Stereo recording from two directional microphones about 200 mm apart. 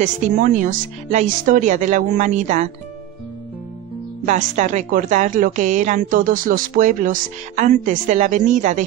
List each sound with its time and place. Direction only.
0.0 s a woman's voice: 40° right (ahead or behind)
4.3 s a woman's voice: 35° right (ahead or behind)